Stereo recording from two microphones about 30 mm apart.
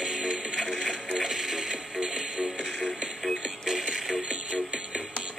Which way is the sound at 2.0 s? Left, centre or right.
Right.